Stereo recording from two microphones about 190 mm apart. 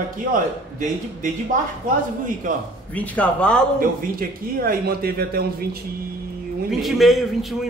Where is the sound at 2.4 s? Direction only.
45° right (ahead or behind).